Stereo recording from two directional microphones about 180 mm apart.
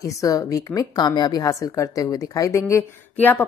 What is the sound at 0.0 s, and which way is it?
A woman's voice, 20° left (ahead or behind).